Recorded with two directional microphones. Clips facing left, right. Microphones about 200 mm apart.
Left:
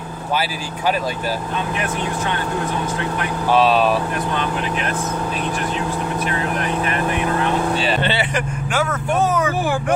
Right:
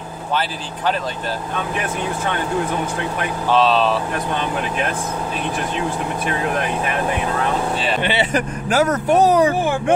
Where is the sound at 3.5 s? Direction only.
10° left (ahead or behind).